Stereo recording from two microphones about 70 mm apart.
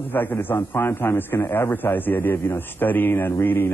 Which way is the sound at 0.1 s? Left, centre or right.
Left.